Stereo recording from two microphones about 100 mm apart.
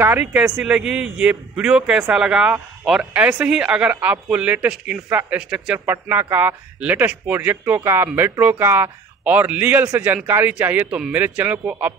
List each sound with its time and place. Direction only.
0.0 s a man's voice: 20° right (ahead or behind)
5.9 s a man's voice: 20° right (ahead or behind)